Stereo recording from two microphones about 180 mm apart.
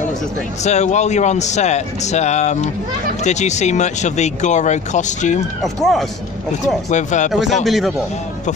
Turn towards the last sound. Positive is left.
turn(degrees=0)  # may be behind; listen again after turning